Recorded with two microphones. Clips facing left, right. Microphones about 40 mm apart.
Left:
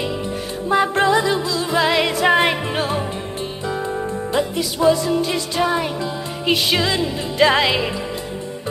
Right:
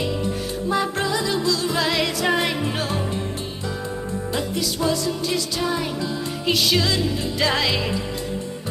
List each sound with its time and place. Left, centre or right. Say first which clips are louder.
0.7 s music: left 7 dB; left
4.3 s music: left 4 dB; left